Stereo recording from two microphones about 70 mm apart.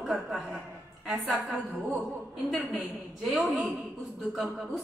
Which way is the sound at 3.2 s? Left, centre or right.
Centre.